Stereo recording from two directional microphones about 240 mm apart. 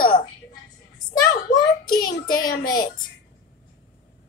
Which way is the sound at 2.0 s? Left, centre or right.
Left.